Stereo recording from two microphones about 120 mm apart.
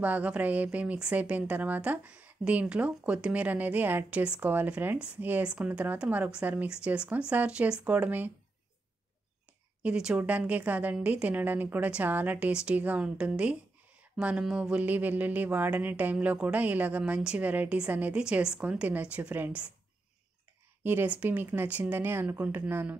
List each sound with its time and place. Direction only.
0.0 s speech: 10° right (ahead or behind)
9.8 s speech: 10° right (ahead or behind)
20.8 s speech: 15° right (ahead or behind)